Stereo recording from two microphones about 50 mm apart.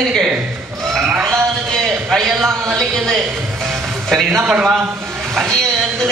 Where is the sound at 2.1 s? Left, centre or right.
Centre.